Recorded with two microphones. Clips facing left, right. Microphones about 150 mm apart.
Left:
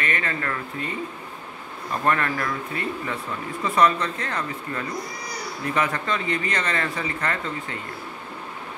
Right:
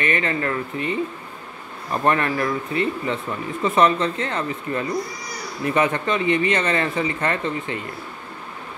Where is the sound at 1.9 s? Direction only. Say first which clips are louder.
Right 3 dB; 20° right (ahead or behind).